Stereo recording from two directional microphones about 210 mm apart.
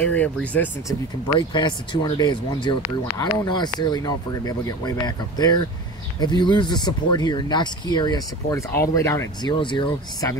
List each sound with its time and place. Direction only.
0.0 s speech: 5° left (ahead or behind)
1.5 s speech: 20° left (ahead or behind)